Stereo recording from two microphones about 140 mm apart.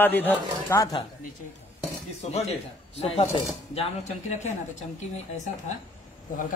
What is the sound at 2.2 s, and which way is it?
Speech, 50° left (ahead or behind).